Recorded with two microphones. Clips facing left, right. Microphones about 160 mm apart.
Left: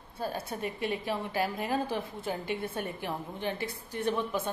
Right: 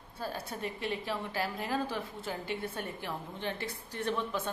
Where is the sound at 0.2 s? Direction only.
15° left (ahead or behind).